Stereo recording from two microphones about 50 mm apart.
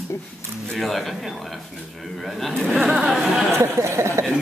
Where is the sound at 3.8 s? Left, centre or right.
Right.